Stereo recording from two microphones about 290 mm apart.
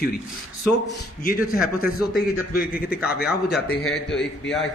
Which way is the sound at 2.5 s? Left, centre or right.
Left.